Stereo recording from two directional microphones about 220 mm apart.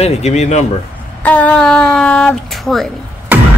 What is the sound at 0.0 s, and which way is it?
Speech, 30° left (ahead or behind).